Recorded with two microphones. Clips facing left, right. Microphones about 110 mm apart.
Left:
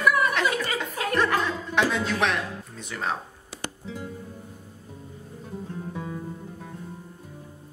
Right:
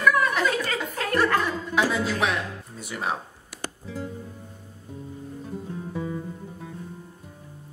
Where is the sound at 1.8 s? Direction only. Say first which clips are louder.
Even; 5° right (ahead or behind).